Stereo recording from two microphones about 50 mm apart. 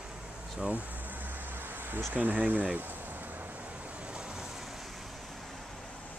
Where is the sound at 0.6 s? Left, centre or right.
Right; by 5.6 s centre.